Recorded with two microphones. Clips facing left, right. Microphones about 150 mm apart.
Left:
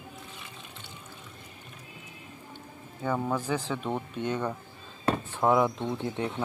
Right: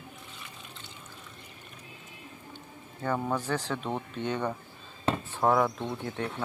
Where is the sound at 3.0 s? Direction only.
5° left (ahead or behind).